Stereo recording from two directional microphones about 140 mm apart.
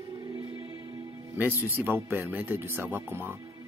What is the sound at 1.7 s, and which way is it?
A man's voice, 15° right (ahead or behind).